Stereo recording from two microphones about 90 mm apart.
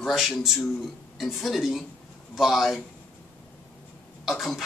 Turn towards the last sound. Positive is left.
turn(degrees=0)  # may be behind; listen again after turning